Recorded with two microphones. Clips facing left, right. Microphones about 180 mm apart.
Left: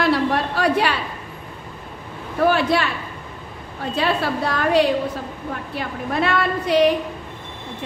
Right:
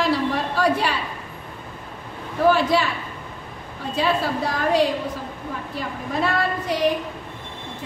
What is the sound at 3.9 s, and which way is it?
A woman's voice, 65° left (ahead or behind).